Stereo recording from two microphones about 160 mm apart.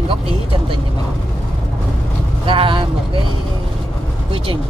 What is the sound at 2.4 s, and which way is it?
Speech, 35° right (ahead or behind).